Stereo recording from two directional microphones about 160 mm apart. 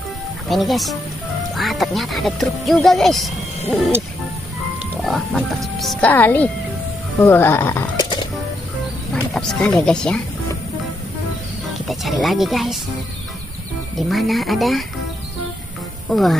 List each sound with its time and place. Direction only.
0.5 s speech: centre (ahead or behind)
5.0 s speech: centre (ahead or behind)
8.0 s music: 30° left (ahead or behind)
9.1 s music: 5° left (ahead or behind)
9.8 s speech: 5° left (ahead or behind)
11.9 s speech: centre (ahead or behind)
13.9 s speech: centre (ahead or behind)
16.1 s speech: centre (ahead or behind)